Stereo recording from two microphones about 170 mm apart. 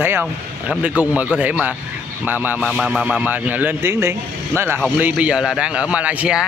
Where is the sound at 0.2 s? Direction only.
10° right (ahead or behind).